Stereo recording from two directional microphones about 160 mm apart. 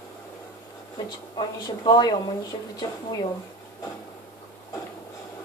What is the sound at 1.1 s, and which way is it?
Speech, 30° left (ahead or behind).